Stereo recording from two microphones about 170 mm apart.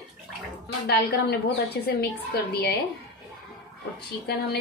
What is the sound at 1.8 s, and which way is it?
Speech, 70° left (ahead or behind).